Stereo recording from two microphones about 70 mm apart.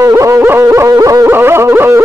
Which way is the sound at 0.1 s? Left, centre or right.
Right.